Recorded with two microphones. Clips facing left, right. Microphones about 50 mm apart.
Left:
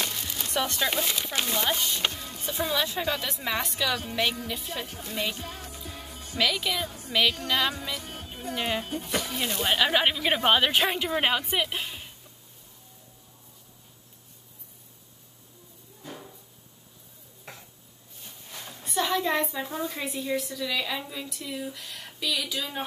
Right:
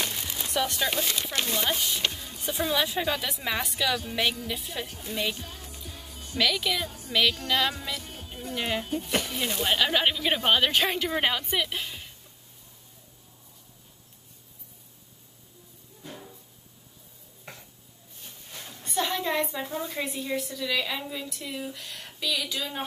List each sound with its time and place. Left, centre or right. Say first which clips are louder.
0.0 s music: even; centre
0.5 s speech: even; centre
2.0 s music: left 1 dB; centre
2.4 s speech: right 1 dB; centre
5.4 s music: left 3 dB; left
6.3 s speech: even; centre
7.1 s music: even; centre
7.4 s speech: even; centre
8.0 s music: left 2 dB; left
8.5 s speech: right 1 dB; centre
16.0 s a sound: left 1 dB; centre
17.5 s a sound: even; centre
18.9 s a woman's voice: left 2 dB; centre